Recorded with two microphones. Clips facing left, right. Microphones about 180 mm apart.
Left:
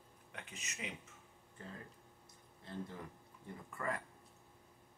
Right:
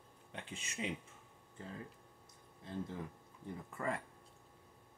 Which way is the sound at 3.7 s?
25° right (ahead or behind).